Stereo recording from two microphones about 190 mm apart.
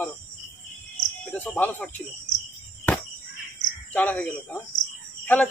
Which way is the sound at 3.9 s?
10° left (ahead or behind).